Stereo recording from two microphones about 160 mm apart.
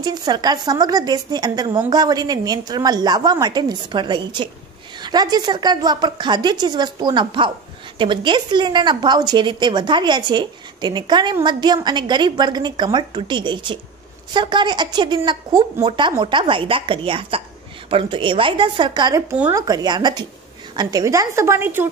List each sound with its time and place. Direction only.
0.0 s a woman's voice: 25° right (ahead or behind)